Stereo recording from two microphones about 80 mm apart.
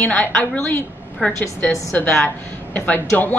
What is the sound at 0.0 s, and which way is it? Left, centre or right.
A woman's voice, centre.